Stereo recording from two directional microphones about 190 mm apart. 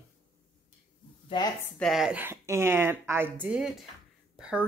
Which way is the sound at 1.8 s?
Centre (ahead or behind).